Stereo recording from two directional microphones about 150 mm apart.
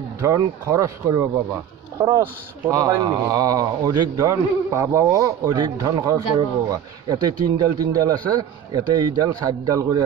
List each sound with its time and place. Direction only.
0.2 s speech: 20° right (ahead or behind)